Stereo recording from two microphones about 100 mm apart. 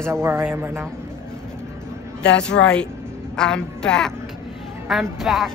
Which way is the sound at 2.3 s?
10° left (ahead or behind).